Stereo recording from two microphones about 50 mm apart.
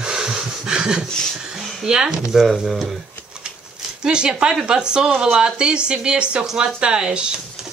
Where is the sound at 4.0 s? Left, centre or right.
Centre.